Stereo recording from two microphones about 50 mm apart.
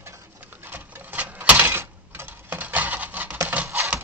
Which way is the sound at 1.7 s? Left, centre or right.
Right.